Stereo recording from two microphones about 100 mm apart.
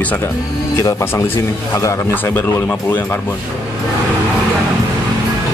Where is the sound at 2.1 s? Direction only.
20° left (ahead or behind).